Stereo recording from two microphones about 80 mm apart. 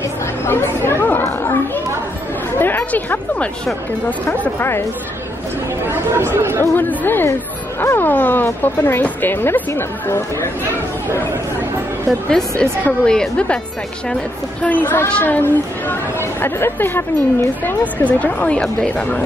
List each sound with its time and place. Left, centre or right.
0.5 s speech: left
2.6 s speech: left
5.9 s speech: right
6.6 s speech: left
12.3 s a woman's voice: centre
14.6 s speech: left